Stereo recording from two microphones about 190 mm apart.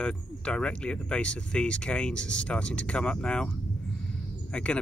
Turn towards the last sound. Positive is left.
turn(degrees=5)  # may be behind; listen again after turning